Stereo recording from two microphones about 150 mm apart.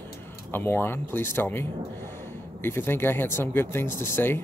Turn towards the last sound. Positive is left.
turn(degrees=15)  # may be behind; listen again after turning